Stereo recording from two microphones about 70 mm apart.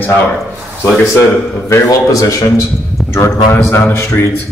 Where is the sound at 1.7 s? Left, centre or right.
Left.